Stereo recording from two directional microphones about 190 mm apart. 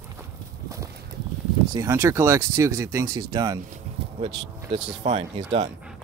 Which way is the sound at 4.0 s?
30° right (ahead or behind).